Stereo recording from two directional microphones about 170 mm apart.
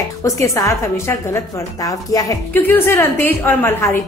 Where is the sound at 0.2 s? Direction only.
20° left (ahead or behind).